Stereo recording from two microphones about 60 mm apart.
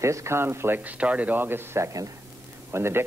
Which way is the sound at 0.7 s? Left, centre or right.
Right.